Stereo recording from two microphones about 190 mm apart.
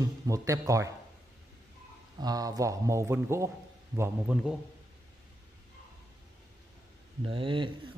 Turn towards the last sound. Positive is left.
turn(degrees=-25)  # may be behind; listen again after turning